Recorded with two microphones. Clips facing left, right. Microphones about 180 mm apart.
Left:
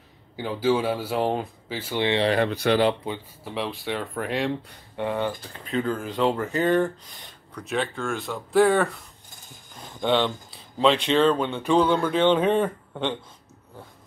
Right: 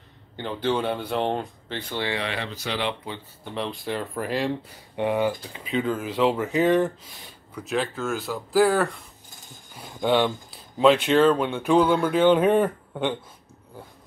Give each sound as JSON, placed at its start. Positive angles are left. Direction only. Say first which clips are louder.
{"t": 0.4, "sound": "speech", "louder": "left 2 dB", "side_deg": 5}
{"t": 2.0, "sound": "speech", "louder": "left 6 dB", "side_deg": 20}
{"t": 2.2, "sound": "speech", "louder": "left 9 dB", "side_deg": 50}
{"t": 3.1, "sound": "speech", "louder": "left 4 dB", "side_deg": 20}
{"t": 3.4, "sound": "speech", "louder": "even", "side_deg": 5}
{"t": 4.9, "sound": "speech", "louder": "right 3 dB", "side_deg": -15}
{"t": 5.5, "sound": "speech", "louder": "right 1 dB", "side_deg": -5}
{"t": 9.8, "sound": "a sound", "louder": "right 1 dB", "side_deg": -10}
{"t": 10.8, "sound": "speech", "louder": "right 2 dB", "side_deg": -5}